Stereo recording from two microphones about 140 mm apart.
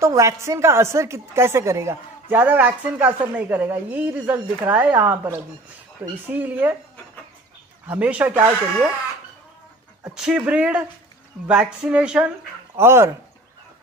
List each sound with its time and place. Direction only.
0.0 s a woman's voice: 20° right (ahead or behind)
7.8 s speech: 10° right (ahead or behind)
10.1 s speech: 5° right (ahead or behind)